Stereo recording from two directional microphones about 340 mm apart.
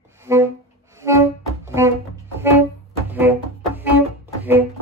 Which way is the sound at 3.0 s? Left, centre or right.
Centre.